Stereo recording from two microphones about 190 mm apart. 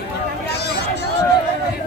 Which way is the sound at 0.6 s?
60° left (ahead or behind).